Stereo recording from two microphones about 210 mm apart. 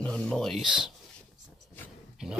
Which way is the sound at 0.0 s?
5° left (ahead or behind).